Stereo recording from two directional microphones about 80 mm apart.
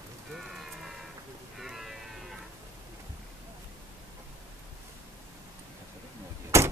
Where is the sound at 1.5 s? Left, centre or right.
Centre.